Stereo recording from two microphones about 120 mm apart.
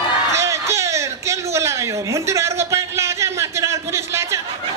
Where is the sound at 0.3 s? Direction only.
25° right (ahead or behind).